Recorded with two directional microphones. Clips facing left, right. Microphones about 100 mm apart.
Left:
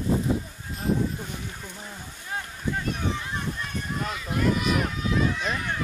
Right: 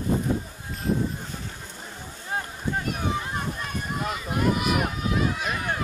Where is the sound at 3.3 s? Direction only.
45° right (ahead or behind).